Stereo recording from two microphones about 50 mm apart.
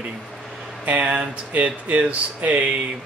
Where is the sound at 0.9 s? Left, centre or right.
Right.